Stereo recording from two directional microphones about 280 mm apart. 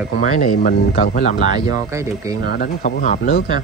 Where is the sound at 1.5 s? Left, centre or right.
Centre.